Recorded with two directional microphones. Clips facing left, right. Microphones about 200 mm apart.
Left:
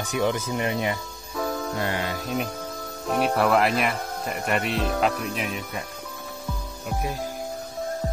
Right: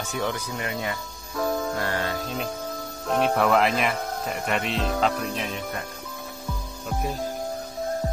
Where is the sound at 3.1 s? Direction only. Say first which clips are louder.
Even; 5° left (ahead or behind).